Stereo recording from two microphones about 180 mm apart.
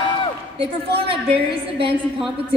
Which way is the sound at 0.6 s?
30° right (ahead or behind).